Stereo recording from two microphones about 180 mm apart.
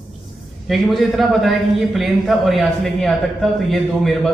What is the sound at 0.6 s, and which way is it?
A man's voice, centre (ahead or behind).